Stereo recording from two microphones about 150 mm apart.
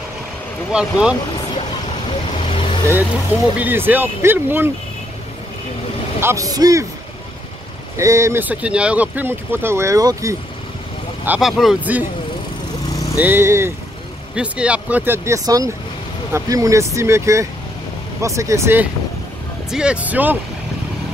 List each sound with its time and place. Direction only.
0.7 s speech: 5° right (ahead or behind)
2.5 s vehicle: 35° left (ahead or behind)
3.0 s speech: 10° right (ahead or behind)
6.2 s speech: 20° right (ahead or behind)
8.0 s speech: 20° right (ahead or behind)
11.2 s speech: 5° right (ahead or behind)
13.2 s speech: 15° right (ahead or behind)
19.7 s speech: 5° right (ahead or behind)